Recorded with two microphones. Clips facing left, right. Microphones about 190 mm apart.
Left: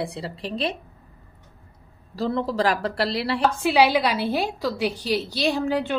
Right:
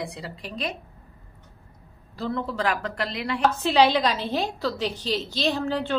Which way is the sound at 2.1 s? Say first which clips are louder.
Left 4 dB; 35° left (ahead or behind).